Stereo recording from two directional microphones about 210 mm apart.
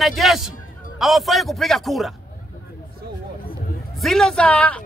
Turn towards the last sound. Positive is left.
turn(degrees=5)  # may be behind; listen again after turning